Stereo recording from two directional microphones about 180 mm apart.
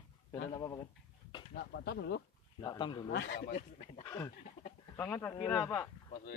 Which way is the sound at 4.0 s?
15° left (ahead or behind).